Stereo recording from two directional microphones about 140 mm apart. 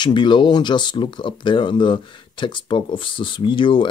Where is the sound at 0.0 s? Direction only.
35° left (ahead or behind).